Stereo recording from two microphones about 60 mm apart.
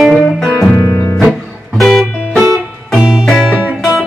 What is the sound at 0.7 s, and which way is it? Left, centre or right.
Music, left.